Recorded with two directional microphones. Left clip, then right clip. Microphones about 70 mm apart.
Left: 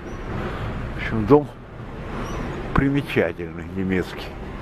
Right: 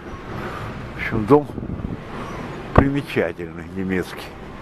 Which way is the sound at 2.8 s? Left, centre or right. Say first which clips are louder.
Right 2 dB; centre.